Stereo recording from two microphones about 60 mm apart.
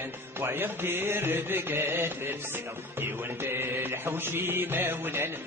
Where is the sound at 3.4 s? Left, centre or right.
Right.